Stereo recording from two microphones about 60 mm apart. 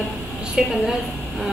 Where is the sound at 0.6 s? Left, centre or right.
Centre.